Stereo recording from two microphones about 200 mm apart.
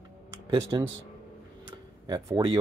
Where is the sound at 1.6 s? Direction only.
20° right (ahead or behind).